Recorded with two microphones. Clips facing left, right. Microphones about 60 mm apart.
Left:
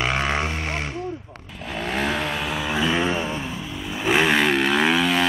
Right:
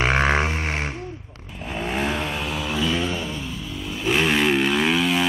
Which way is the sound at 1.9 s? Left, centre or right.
Centre.